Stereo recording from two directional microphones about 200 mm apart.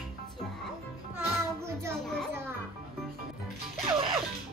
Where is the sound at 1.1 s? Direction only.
10° right (ahead or behind).